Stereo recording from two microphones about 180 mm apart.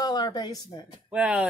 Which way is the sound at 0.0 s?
20° left (ahead or behind).